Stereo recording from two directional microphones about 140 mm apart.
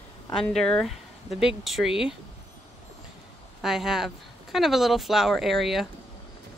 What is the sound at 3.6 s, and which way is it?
Speech, 5° right (ahead or behind).